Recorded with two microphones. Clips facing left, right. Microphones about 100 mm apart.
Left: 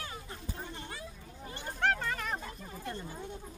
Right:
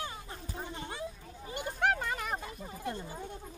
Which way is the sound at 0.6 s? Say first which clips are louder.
Right 4 dB; 15° right (ahead or behind).